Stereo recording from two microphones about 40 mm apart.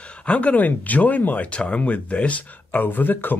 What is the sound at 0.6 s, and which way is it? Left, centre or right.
Speech, left.